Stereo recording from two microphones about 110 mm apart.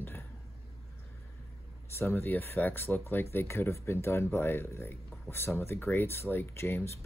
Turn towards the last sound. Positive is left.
turn(degrees=25)  # may be behind; listen again after turning